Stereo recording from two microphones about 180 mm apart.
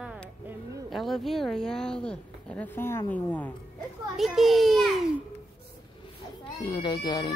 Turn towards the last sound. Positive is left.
turn(degrees=20)  # may be behind; listen again after turning